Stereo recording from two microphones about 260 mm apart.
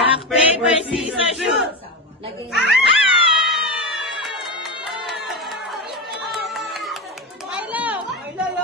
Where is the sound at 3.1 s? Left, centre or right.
Centre.